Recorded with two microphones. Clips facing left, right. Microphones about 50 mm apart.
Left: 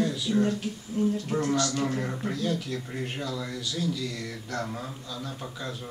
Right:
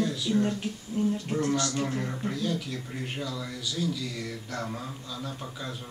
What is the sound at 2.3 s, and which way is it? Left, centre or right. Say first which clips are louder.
A man's voice: left 1 dB; centre.